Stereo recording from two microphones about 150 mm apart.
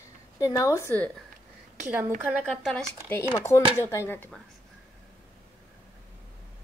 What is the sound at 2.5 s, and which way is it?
Speech, 5° left (ahead or behind).